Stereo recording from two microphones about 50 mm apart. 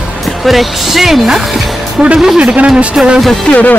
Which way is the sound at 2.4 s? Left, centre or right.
Right.